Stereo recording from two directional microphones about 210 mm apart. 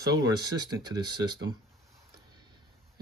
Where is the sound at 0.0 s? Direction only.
20° right (ahead or behind).